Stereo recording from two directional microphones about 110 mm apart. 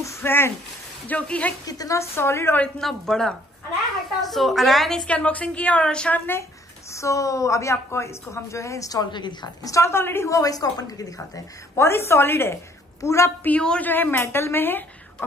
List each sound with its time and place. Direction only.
0.0 s a woman's voice: 25° left (ahead or behind)
1.7 s a woman's voice: 30° left (ahead or behind)
2.6 s a man's voice: 5° left (ahead or behind)
6.9 s a woman's voice: 30° left (ahead or behind)
13.5 s a woman's voice: 10° left (ahead or behind)